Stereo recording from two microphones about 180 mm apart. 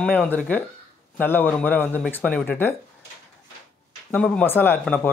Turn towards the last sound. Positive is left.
turn(degrees=10)  # may be behind; listen again after turning